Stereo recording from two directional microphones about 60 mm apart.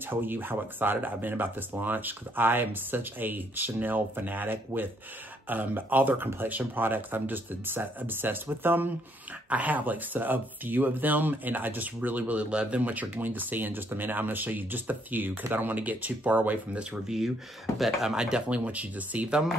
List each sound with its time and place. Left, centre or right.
0.1 s speech: right
17.7 s speech: centre
18.1 s speech: centre